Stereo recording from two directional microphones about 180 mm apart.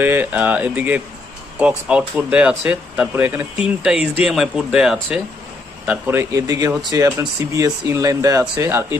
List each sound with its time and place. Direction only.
0.0 s speech: 10° right (ahead or behind)